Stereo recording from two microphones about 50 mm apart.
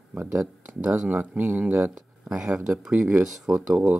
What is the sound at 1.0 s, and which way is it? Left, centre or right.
Speech, right.